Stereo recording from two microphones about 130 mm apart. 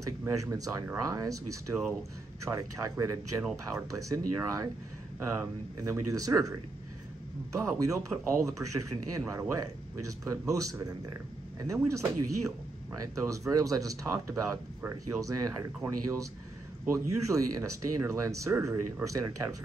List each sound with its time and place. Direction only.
0.2 s speech: 25° right (ahead or behind)
5.8 s speech: 25° right (ahead or behind)